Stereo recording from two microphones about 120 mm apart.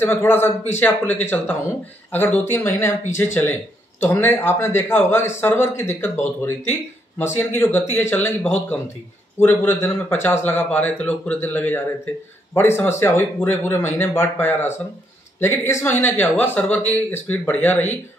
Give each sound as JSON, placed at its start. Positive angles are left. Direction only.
{"t": 0.0, "sound": "a man's voice", "side_deg": 15}